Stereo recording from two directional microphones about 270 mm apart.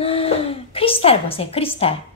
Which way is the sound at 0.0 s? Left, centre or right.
Left.